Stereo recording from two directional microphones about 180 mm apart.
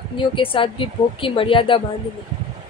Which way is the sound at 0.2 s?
30° left (ahead or behind).